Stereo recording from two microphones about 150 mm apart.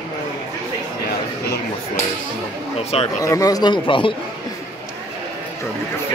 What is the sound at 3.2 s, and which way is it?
Speech, 20° left (ahead or behind).